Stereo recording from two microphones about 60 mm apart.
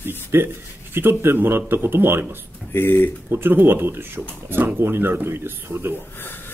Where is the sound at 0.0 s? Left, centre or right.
Right.